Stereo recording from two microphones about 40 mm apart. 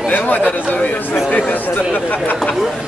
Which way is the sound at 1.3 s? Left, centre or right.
Left.